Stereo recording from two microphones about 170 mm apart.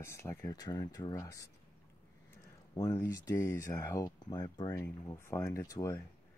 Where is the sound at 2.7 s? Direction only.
20° left (ahead or behind).